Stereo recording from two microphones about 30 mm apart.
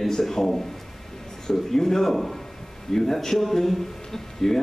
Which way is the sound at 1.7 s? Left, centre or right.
Centre.